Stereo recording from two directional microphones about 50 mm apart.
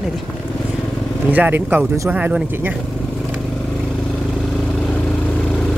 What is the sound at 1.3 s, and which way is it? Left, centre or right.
Speech, right.